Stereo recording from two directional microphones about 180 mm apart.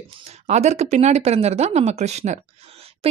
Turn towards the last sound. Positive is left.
turn(degrees=-35)  # may be behind; listen again after turning